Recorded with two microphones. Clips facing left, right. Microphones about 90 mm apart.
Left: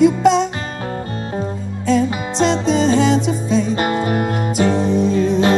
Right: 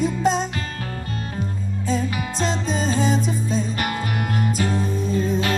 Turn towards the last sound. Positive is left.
turn(degrees=80)